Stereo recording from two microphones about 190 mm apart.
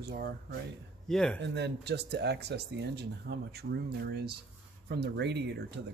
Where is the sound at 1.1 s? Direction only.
5° left (ahead or behind).